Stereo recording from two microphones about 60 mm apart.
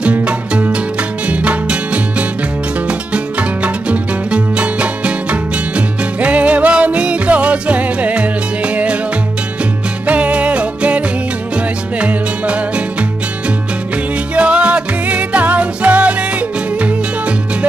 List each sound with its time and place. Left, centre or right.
0.0 s music: right
10.0 s music: right
14.3 s music: centre